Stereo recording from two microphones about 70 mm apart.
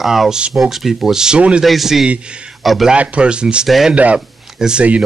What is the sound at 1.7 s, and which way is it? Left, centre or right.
Speech, centre.